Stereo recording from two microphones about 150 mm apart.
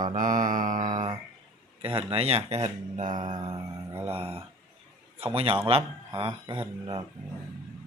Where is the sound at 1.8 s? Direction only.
40° right (ahead or behind).